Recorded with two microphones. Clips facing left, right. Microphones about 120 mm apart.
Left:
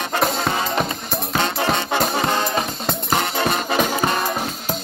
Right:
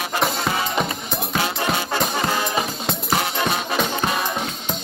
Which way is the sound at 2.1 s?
25° left (ahead or behind).